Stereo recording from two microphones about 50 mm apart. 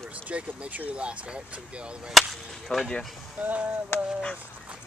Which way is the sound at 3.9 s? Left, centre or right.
Left.